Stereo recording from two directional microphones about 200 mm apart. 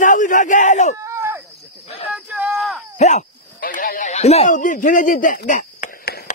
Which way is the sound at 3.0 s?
35° left (ahead or behind).